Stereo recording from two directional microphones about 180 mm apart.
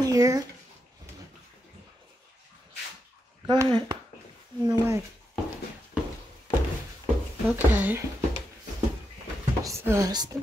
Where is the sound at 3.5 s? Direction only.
25° right (ahead or behind).